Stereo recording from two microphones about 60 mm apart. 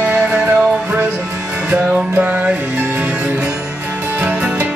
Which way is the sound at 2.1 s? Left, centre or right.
Right.